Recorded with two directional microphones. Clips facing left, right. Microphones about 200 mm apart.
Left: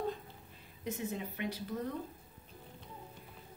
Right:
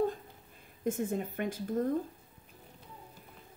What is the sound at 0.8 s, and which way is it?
A woman's voice, 50° right (ahead or behind).